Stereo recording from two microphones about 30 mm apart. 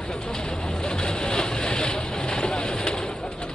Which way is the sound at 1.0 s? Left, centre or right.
Left.